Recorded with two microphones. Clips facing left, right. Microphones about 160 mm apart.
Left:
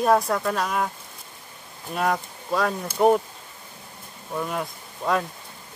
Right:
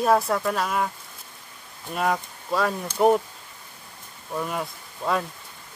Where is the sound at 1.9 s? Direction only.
Centre (ahead or behind).